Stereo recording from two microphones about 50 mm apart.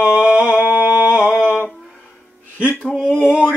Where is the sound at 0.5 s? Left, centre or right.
Right.